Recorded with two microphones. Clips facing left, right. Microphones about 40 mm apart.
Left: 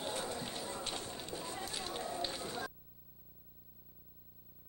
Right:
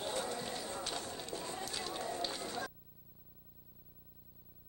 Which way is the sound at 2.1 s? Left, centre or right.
Centre.